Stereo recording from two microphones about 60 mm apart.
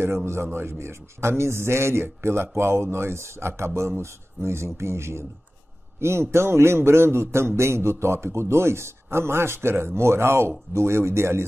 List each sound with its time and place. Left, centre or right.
0.0 s a man's voice: right